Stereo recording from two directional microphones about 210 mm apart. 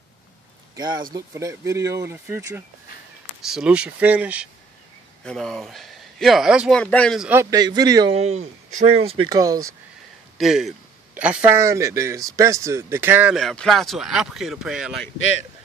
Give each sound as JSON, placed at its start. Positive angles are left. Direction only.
{"t": 0.7, "sound": "a man's voice", "side_deg": -20}
{"t": 7.5, "sound": "speech", "side_deg": -20}
{"t": 8.1, "sound": "speech", "side_deg": -30}
{"t": 10.3, "sound": "a man's voice", "side_deg": 0}